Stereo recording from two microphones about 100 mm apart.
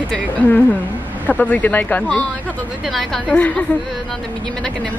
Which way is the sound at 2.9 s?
5° left (ahead or behind).